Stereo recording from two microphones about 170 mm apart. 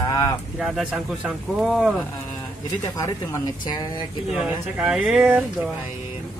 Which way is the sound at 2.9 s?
20° left (ahead or behind).